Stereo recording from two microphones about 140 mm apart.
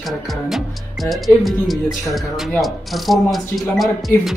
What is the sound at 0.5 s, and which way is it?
Speech, centre (ahead or behind).